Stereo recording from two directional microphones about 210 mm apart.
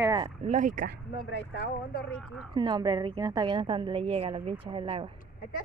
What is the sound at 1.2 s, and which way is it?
Speech, 55° left (ahead or behind).